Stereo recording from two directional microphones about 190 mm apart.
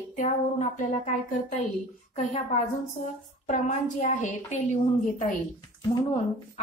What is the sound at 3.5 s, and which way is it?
A woman's voice, 40° left (ahead or behind).